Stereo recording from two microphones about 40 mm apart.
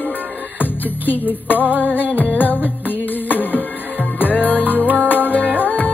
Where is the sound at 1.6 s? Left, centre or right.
Right.